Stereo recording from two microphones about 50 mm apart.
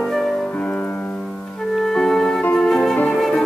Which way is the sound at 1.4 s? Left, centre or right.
Left.